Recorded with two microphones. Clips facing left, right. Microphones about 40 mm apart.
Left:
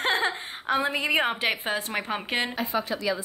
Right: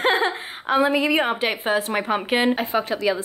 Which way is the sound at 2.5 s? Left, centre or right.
Right.